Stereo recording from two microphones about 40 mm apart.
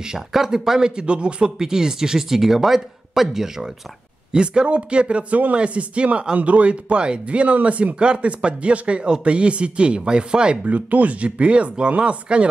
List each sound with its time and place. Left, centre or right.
0.3 s speech: centre; by 1.5 s right
1.6 s speech: centre
4.6 s speech: right
10.6 s speech: right